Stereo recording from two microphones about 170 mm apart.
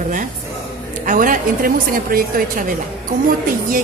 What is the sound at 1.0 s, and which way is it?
A woman's voice, 50° right (ahead or behind).